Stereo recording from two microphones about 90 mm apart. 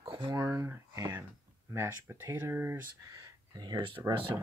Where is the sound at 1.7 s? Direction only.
30° right (ahead or behind).